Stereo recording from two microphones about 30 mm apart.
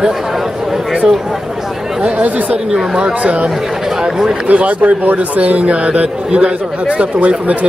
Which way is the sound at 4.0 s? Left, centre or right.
Right.